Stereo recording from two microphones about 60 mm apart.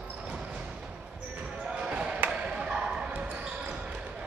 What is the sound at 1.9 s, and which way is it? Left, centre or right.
Basketball bounce, centre.